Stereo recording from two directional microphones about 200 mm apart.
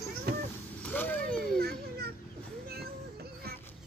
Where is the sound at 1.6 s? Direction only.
50° right (ahead or behind).